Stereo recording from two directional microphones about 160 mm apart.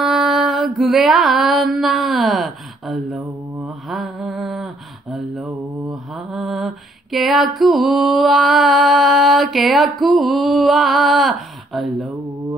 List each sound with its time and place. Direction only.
0.0 s a sound: centre (ahead or behind)
3.9 s music: centre (ahead or behind)
5.1 s mantra: centre (ahead or behind)